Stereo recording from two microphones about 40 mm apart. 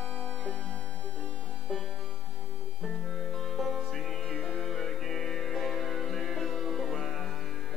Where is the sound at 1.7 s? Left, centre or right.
Centre.